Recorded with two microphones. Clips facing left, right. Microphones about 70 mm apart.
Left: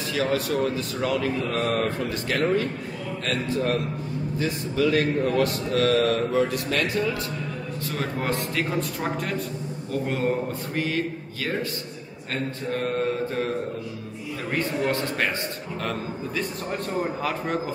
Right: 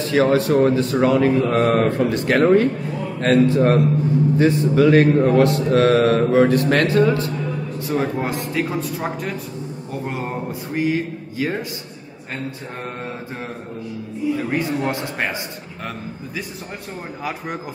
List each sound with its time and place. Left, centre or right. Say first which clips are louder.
0.1 s mantra: right 9 dB; right
2.0 s speech: right 9 dB; right
7.9 s speech: right 6 dB; centre
14.5 s speech: right 3 dB; centre